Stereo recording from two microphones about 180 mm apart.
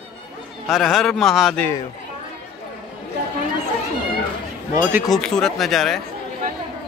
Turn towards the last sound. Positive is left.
turn(degrees=0)  # may be behind; listen again after turning